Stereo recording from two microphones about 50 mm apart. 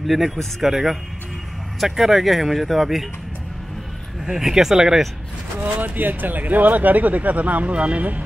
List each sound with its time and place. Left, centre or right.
0.0 s speech: centre
4.3 s speech: centre
5.6 s speech: right